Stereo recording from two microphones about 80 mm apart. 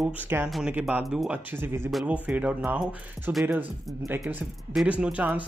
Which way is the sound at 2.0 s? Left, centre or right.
Centre.